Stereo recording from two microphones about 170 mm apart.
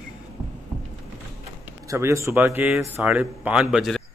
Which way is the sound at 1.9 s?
15° right (ahead or behind).